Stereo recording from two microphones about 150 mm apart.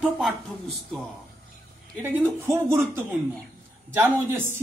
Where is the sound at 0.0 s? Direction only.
Centre (ahead or behind).